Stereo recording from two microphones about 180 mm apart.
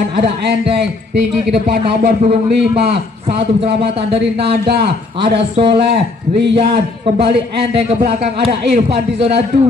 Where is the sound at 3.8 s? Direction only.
65° right (ahead or behind).